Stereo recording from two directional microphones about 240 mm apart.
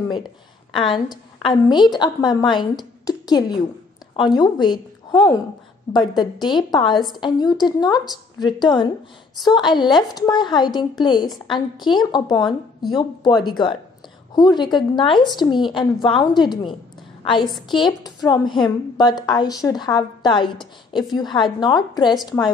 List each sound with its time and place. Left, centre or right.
0.7 s a woman's voice: left
6.4 s a woman's voice: centre
17.7 s a woman's voice: centre